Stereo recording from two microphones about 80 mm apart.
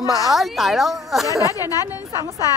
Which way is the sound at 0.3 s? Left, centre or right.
Centre.